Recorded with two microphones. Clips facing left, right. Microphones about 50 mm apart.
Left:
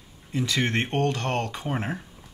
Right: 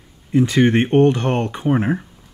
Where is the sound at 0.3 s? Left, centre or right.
Right.